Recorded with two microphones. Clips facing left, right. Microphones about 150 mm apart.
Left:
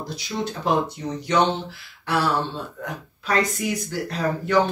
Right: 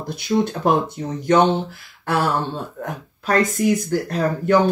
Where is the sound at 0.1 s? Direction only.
50° right (ahead or behind).